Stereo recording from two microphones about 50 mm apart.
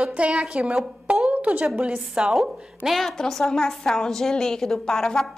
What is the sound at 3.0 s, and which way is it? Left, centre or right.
A woman's voice, centre.